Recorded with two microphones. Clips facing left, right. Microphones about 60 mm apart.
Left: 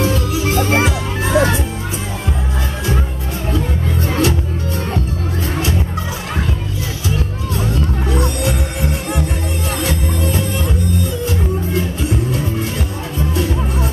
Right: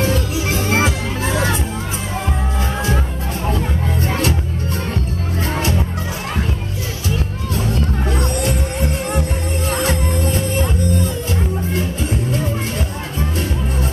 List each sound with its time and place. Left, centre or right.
0.0 s music: right
0.6 s music: left
3.5 s music: right
8.2 s music: right
9.8 s music: right